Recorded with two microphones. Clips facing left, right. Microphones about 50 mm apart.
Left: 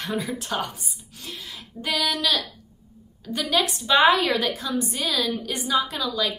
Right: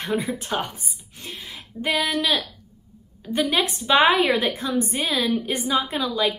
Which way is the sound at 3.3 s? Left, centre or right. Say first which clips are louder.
Right 2 dB; right.